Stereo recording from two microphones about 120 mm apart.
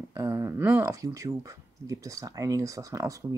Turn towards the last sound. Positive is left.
turn(degrees=-25)  # may be behind; listen again after turning